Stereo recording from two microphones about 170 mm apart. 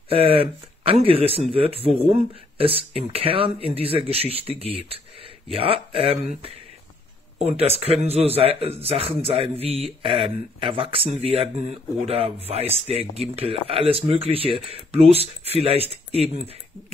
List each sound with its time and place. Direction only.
0.1 s speech: 35° right (ahead or behind)